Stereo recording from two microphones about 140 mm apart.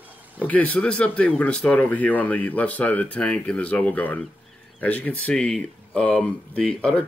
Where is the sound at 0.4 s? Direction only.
10° left (ahead or behind).